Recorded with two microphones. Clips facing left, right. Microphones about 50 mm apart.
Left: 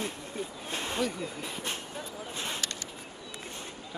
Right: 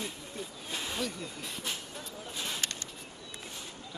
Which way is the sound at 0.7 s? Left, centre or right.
Centre.